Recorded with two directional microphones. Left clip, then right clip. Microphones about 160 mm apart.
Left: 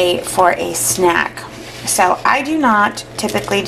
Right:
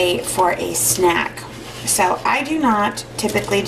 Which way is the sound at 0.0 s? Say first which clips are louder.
Left 4 dB; 10° left (ahead or behind).